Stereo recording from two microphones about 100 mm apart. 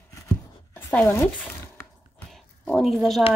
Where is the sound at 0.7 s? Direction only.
20° left (ahead or behind).